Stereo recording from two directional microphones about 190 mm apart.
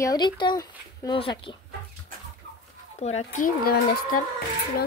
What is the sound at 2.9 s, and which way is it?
Speech, 35° left (ahead or behind).